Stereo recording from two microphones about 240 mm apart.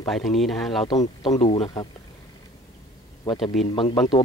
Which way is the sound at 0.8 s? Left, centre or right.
Left.